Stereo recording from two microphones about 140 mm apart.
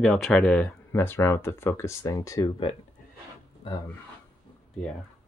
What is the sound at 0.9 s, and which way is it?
Speech, 15° left (ahead or behind).